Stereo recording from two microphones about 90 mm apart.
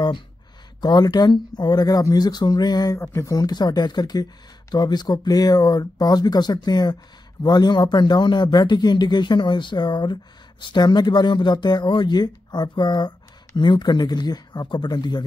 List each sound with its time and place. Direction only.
0.7 s speech: 55° left (ahead or behind)
3.0 s speech: 35° left (ahead or behind); by 15.2 s 55° left (ahead or behind)